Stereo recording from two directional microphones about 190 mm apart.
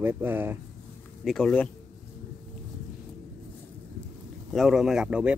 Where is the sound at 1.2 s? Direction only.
Centre (ahead or behind).